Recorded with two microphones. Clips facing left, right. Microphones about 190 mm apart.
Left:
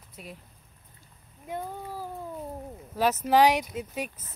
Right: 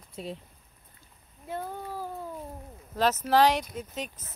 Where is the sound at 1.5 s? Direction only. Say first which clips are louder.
Even; 15° left (ahead or behind).